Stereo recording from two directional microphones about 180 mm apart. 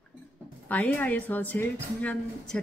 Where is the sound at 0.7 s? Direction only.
10° left (ahead or behind).